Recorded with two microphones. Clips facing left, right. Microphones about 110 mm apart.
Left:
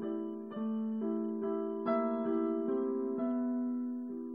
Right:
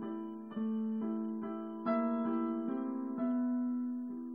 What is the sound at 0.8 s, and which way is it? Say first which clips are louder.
Music: left 4 dB; 5° left (ahead or behind).